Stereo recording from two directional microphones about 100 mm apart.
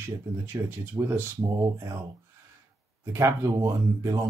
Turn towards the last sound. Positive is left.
turn(degrees=-30)  # may be behind; listen again after turning